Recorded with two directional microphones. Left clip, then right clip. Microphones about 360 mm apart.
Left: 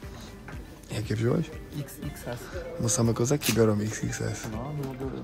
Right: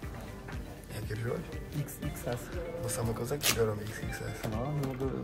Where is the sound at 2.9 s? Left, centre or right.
Centre.